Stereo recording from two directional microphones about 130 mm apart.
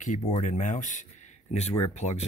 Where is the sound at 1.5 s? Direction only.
55° left (ahead or behind).